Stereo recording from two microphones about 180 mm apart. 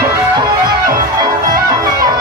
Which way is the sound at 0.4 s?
20° right (ahead or behind).